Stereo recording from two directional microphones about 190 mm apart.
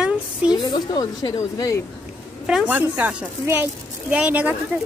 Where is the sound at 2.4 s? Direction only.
5° right (ahead or behind).